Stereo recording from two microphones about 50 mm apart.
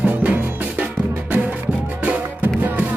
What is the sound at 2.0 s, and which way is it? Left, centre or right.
Music, right.